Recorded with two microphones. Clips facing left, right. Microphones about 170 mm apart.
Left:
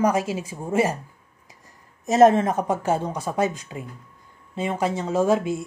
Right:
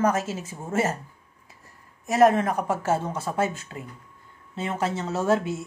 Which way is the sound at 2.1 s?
25° left (ahead or behind).